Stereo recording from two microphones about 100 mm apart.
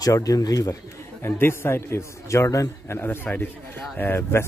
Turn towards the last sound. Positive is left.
turn(degrees=20)  # may be behind; listen again after turning